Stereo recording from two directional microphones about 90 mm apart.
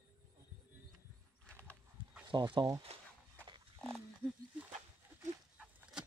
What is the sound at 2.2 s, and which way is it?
Speech, 65° right (ahead or behind).